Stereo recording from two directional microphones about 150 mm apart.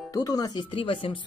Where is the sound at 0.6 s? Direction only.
35° left (ahead or behind).